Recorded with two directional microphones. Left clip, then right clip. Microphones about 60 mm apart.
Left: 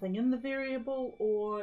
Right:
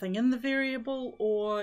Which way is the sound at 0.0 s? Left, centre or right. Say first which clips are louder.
Right 3 dB; right.